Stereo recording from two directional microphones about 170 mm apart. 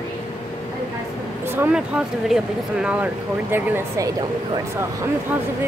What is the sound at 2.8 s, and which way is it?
Speech, 5° right (ahead or behind).